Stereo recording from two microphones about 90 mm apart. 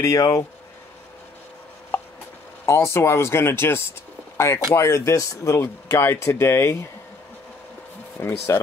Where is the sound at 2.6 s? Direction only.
30° left (ahead or behind).